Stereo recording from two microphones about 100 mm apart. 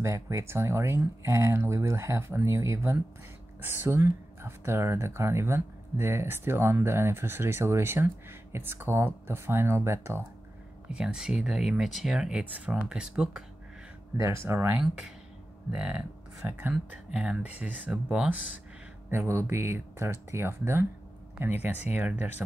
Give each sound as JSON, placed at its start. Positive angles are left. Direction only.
{"t": 0.0, "sound": "speech", "side_deg": -30}
{"t": 10.9, "sound": "speech", "side_deg": -10}
{"t": 14.1, "sound": "speech", "side_deg": -30}
{"t": 14.7, "sound": "speech", "side_deg": -10}
{"t": 19.0, "sound": "speech", "side_deg": -25}